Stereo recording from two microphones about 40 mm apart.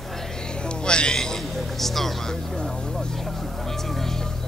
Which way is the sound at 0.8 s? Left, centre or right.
Left.